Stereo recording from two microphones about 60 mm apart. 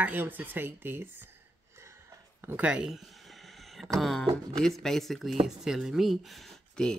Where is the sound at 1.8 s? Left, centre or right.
Right.